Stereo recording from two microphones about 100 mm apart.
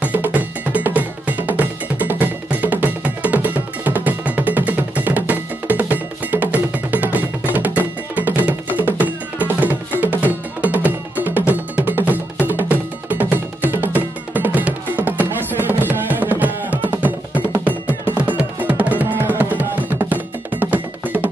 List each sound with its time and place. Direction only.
0.0 s percussion: 15° right (ahead or behind)
7.5 s music: 15° right (ahead or behind)